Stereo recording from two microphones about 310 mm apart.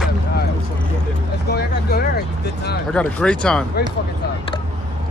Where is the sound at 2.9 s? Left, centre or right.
Centre.